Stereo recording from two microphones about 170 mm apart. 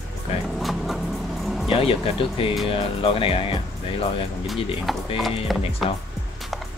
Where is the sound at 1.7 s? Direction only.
35° left (ahead or behind).